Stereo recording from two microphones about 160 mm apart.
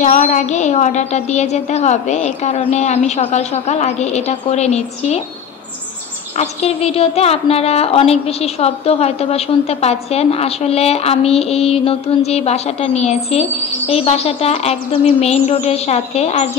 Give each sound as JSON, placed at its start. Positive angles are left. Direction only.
{"t": 0.0, "sound": "a woman's voice", "side_deg": 50}
{"t": 6.3, "sound": "a woman's voice", "side_deg": 40}